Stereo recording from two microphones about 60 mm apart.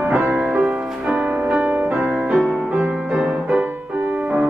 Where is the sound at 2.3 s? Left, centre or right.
Centre.